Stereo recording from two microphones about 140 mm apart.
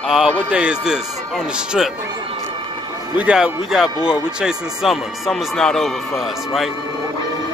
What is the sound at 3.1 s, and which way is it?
Speech, 5° right (ahead or behind).